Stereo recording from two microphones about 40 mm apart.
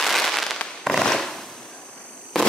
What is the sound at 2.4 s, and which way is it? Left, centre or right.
Fireworks, centre.